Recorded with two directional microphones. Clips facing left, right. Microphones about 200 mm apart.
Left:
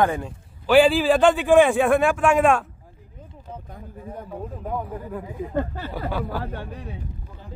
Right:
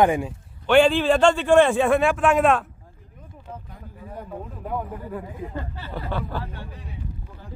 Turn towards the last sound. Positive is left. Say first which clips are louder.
# left 2 dB
turn(degrees=10)  # may be behind; listen again after turning